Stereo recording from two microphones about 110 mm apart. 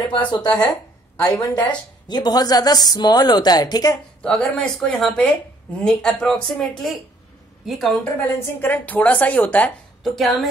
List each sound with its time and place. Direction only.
0.1 s a woman's voice: 45° left (ahead or behind)
4.2 s a woman's voice: 10° left (ahead or behind)
8.0 s a woman's voice: 20° left (ahead or behind)